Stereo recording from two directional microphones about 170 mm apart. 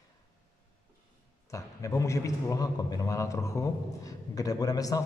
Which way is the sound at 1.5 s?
20° left (ahead or behind).